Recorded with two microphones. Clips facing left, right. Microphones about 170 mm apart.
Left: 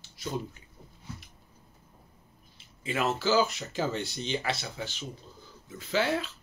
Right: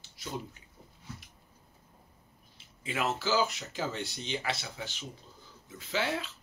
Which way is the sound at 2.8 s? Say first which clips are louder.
Left 3 dB; 10° right (ahead or behind).